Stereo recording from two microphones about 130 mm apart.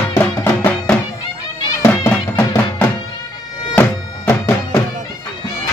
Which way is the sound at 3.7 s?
15° left (ahead or behind).